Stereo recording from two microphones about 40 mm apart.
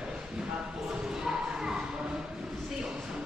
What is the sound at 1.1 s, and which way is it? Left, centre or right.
Basketball bounce, centre.